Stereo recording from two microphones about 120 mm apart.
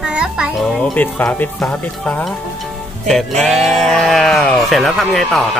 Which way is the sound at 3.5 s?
Centre (ahead or behind).